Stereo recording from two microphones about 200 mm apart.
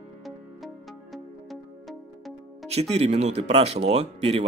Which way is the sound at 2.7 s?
30° right (ahead or behind).